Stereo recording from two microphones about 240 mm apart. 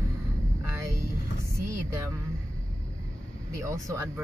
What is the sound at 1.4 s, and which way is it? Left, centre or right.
Music, centre.